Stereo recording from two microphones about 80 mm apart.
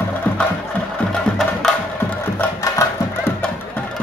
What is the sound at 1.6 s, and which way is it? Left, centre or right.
Music, centre.